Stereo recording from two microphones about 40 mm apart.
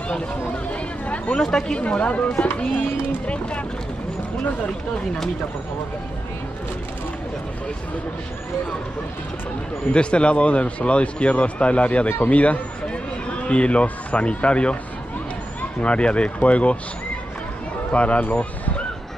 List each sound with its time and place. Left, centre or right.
0.7 s speech: left
1.3 s speech: centre
1.8 s speech: left
2.2 s speech: left
3.3 s speech: left
9.9 s a man's voice: left
15.8 s speech: left
17.9 s speech: left